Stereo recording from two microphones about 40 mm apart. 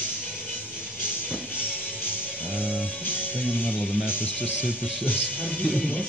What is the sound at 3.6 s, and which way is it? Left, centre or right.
Speech, left.